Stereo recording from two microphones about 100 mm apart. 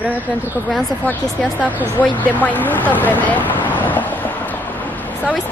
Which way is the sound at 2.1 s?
15° left (ahead or behind).